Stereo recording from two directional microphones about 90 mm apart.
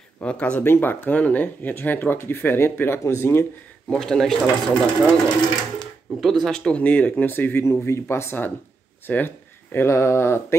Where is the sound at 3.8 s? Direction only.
5° left (ahead or behind).